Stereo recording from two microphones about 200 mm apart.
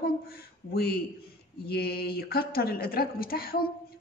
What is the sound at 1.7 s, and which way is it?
A woman's voice, 50° left (ahead or behind).